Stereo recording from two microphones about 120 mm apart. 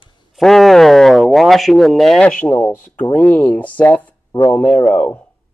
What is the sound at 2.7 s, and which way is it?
Speech, 90° left.